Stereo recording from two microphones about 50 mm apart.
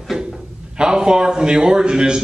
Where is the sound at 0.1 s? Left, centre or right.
Centre.